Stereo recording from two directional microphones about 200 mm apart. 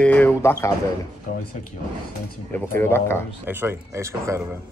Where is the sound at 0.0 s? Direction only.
10° left (ahead or behind).